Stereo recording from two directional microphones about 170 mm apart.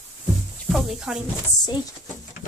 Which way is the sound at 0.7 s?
5° right (ahead or behind).